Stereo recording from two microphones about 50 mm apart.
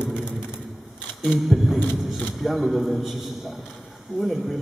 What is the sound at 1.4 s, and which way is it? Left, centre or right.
A man's voice, centre.